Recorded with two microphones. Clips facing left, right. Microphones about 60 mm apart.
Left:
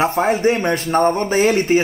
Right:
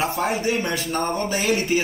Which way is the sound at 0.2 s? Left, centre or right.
Left.